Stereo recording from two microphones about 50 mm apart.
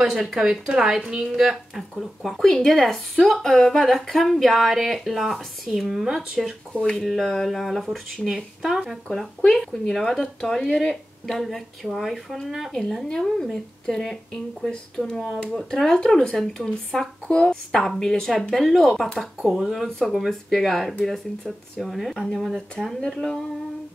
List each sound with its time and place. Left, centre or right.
0.0 s speech: centre
1.8 s speech: centre
6.7 s speech: centre
7.0 s speech: centre
9.5 s speech: centre
17.3 s a woman's voice: centre
17.6 s speech: centre
22.9 s speech: centre